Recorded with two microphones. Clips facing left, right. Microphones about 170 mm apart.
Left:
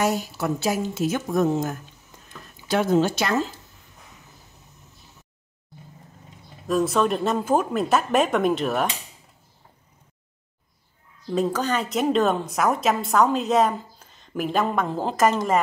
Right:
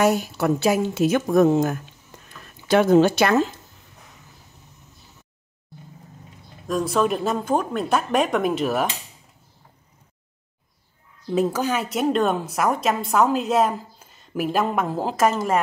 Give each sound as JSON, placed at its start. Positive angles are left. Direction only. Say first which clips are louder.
{"t": 0.0, "sound": "a woman's voice", "louder": "right 4 dB", "side_deg": -60}
{"t": 6.7, "sound": "a woman's voice", "louder": "even", "side_deg": 0}
{"t": 11.2, "sound": "a woman's voice", "louder": "right 2 dB", "side_deg": -5}